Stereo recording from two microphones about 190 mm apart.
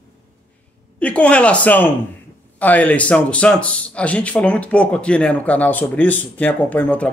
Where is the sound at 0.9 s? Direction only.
5° left (ahead or behind).